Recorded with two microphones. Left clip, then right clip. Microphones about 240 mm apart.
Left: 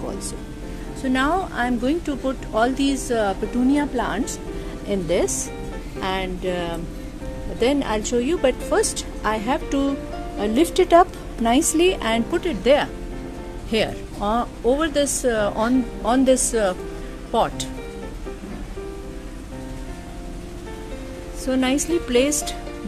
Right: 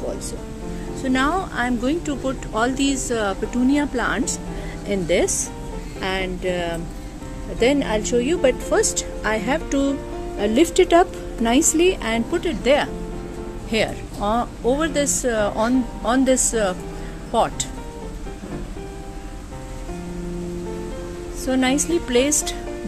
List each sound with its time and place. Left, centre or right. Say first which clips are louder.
1.0 s speech: even; centre
21.5 s speech: right 1 dB; centre